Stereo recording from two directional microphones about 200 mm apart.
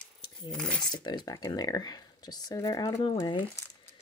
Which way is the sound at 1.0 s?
20° left (ahead or behind).